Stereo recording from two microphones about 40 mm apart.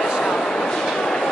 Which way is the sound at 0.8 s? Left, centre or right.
Centre.